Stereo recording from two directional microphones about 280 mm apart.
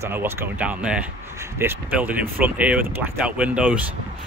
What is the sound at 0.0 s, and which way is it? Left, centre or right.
Speech, centre.